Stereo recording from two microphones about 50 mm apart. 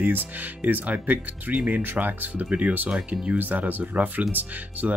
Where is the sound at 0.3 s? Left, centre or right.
Right.